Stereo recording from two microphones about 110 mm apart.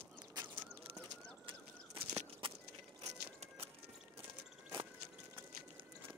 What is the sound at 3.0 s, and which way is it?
Vehicle, 65° right (ahead or behind).